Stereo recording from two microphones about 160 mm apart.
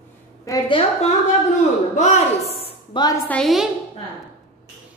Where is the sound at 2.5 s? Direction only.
35° left (ahead or behind).